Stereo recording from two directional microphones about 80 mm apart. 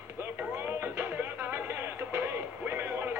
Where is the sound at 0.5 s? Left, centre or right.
Right.